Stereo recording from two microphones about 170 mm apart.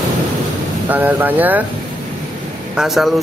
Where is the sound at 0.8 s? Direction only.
10° right (ahead or behind).